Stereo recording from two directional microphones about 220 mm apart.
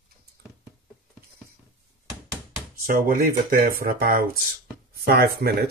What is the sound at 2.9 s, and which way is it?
Speech, 40° right (ahead or behind).